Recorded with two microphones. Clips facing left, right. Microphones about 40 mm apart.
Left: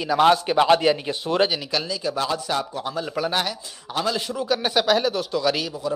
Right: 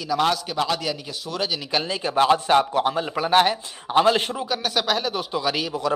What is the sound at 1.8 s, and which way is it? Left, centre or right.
A man's voice, right.